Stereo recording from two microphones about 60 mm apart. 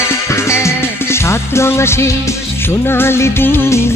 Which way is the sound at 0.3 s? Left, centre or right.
Left.